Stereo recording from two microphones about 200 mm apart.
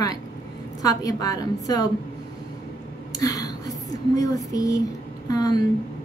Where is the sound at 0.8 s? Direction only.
20° left (ahead or behind).